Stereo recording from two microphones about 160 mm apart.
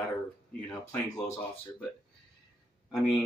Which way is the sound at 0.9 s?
20° left (ahead or behind).